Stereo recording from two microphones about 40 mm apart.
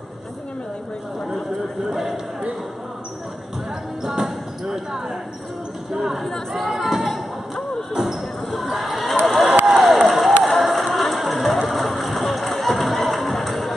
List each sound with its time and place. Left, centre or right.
4.0 s basketball bounce: centre
5.9 s speech: centre
6.5 s chatter: centre
7.9 s basketball bounce: centre
9.2 s run: centre
9.7 s music: centre